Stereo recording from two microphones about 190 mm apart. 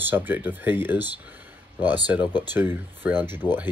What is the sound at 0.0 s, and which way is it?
Speech, 10° right (ahead or behind).